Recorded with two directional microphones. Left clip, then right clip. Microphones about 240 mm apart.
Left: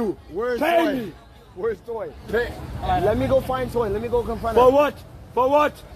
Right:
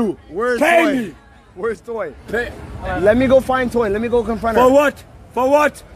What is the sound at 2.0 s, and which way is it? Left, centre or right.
Speech, right.